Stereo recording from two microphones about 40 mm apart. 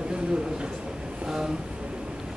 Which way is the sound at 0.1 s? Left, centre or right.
Centre.